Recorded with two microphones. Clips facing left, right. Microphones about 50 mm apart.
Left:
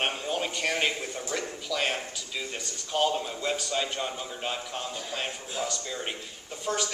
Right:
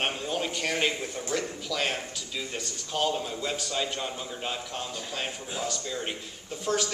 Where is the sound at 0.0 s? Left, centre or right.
Centre.